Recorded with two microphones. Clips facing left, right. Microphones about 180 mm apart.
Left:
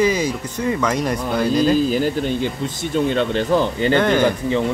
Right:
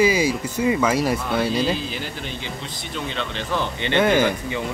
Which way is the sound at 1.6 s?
45° left (ahead or behind).